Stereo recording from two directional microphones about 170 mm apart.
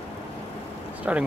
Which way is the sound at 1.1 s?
5° right (ahead or behind).